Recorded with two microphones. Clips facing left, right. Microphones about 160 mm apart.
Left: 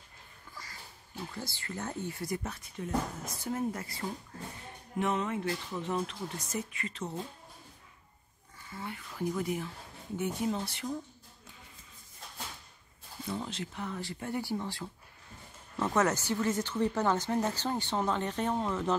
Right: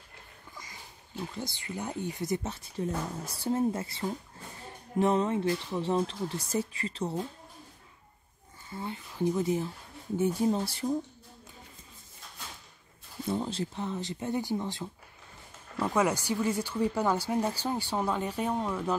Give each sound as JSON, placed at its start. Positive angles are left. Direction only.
{"t": 1.3, "sound": "speech", "side_deg": -20}
{"t": 8.6, "sound": "speech", "side_deg": -25}
{"t": 13.3, "sound": "speech", "side_deg": -35}